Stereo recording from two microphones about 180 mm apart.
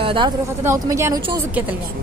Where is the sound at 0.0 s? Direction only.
30° right (ahead or behind).